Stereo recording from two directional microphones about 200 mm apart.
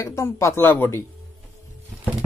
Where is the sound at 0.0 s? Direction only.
15° left (ahead or behind).